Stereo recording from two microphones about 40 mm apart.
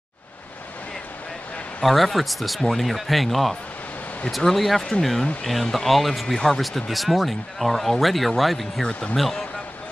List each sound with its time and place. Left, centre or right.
1.8 s speech: centre